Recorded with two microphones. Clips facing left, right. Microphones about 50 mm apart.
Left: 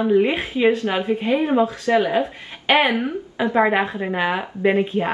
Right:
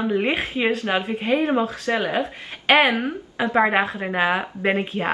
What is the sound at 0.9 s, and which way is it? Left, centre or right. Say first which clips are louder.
Speech: left 2 dB; right.